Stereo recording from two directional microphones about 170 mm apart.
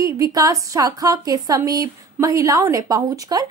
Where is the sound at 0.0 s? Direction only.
20° right (ahead or behind).